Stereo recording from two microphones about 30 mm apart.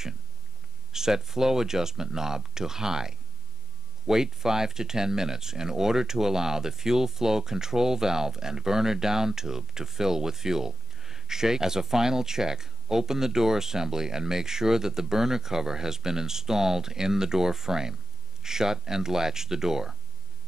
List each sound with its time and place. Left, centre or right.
0.9 s speech: centre